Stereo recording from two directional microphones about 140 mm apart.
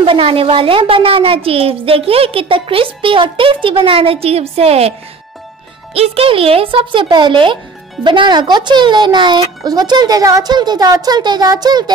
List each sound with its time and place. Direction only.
0.0 s a woman's voice: 40° right (ahead or behind)
5.9 s a woman's voice: 45° right (ahead or behind); by 11.8 s 30° right (ahead or behind)